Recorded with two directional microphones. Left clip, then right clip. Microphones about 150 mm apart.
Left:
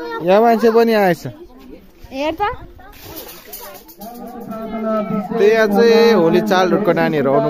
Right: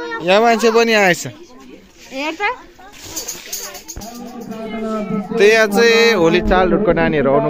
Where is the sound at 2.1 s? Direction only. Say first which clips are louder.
Left 1 dB; 90° left.